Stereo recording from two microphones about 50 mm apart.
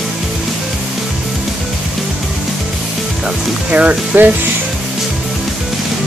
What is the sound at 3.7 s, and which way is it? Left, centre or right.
Speech, right.